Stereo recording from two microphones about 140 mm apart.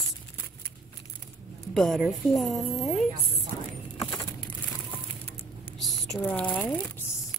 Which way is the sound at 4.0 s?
40° left (ahead or behind).